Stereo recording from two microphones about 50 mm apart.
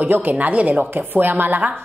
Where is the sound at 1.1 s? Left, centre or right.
Right.